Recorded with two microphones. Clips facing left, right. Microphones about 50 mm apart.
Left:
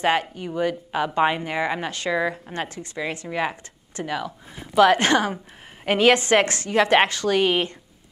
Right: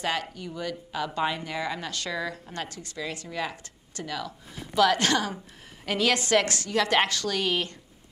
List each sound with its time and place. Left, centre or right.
0.0 s speech: left